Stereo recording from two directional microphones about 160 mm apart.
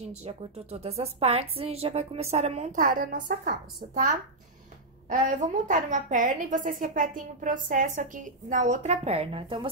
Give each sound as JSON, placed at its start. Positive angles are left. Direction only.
{"t": 0.0, "sound": "a woman's voice", "side_deg": -40}